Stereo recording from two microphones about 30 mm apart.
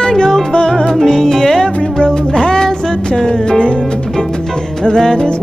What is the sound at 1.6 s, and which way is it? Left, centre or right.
Music, left.